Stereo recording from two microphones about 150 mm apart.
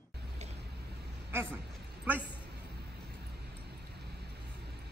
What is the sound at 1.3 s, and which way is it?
Speech, 15° right (ahead or behind).